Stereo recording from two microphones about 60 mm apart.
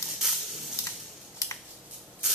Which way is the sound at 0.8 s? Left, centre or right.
Left.